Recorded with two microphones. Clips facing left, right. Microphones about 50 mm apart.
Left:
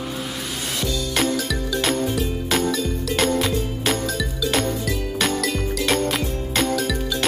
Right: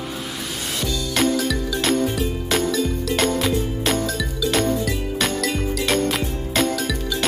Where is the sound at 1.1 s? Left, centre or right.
Centre.